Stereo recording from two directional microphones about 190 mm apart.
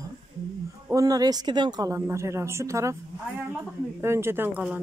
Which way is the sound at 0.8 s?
20° right (ahead or behind).